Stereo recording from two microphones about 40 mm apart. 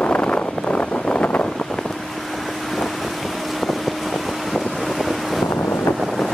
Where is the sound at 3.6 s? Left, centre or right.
Centre.